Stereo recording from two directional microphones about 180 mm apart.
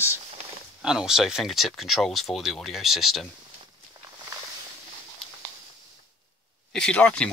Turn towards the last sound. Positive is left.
turn(degrees=5)  # may be behind; listen again after turning